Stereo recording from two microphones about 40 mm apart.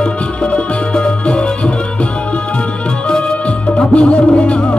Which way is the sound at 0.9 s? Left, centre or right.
Left.